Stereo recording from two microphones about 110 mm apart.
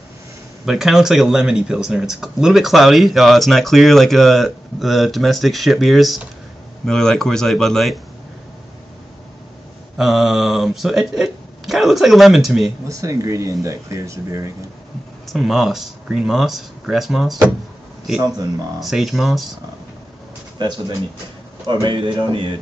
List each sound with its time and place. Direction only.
0.7 s speech: 5° right (ahead or behind)
9.9 s speech: centre (ahead or behind)
12.8 s speech: 30° right (ahead or behind)
15.2 s speech: centre (ahead or behind)
18.8 s speech: centre (ahead or behind)
20.5 s speech: 40° right (ahead or behind)
21.8 s speech: 50° right (ahead or behind)